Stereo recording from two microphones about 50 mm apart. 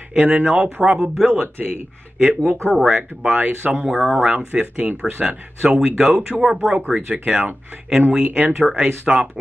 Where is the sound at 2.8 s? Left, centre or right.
Centre.